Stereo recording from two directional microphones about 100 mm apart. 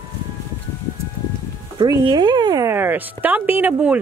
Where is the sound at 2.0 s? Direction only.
50° right (ahead or behind).